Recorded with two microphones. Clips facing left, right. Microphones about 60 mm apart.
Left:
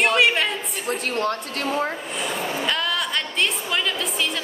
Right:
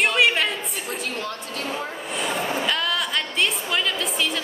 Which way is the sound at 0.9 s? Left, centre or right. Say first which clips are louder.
Left 8 dB; left.